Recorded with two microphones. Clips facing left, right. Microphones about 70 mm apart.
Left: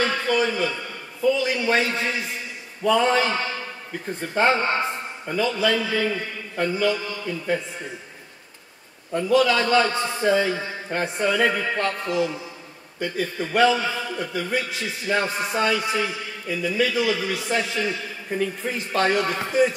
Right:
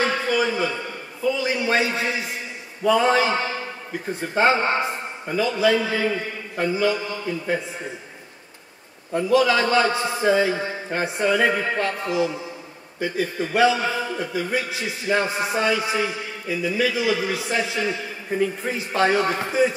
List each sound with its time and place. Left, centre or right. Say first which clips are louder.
0.0 s a sound: even; centre
1.4 s a man's voice: even; centre
9.1 s a man's voice: right 1 dB; centre
13.7 s a man's voice: right 2 dB; centre